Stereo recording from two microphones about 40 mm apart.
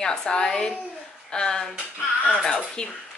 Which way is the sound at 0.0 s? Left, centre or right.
Centre.